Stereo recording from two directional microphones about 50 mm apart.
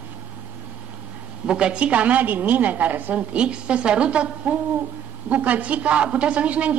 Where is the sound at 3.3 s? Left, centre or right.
Right.